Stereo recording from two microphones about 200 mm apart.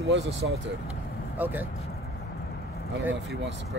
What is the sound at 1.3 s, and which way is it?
Speech, 10° right (ahead or behind).